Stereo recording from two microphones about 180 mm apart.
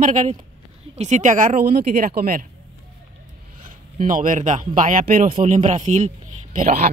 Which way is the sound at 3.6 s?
50° right (ahead or behind).